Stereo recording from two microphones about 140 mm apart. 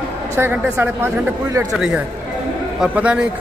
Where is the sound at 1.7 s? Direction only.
5° right (ahead or behind).